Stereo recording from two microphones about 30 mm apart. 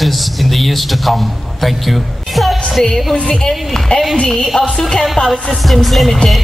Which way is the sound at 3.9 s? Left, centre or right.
Left.